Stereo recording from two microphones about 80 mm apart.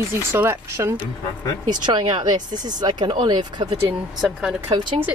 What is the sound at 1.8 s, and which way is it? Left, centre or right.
Speech, right.